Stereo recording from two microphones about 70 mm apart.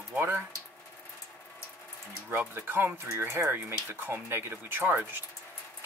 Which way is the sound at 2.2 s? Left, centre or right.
Right.